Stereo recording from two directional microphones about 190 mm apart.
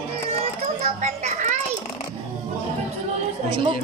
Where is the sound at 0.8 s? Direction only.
40° right (ahead or behind).